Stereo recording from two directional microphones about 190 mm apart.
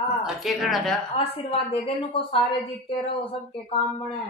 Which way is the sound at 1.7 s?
30° left (ahead or behind).